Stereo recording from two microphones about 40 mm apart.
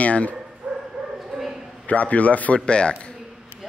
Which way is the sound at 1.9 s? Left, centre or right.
Left.